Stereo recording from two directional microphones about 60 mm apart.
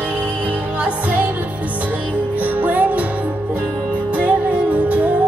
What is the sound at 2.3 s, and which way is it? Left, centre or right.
Music, right.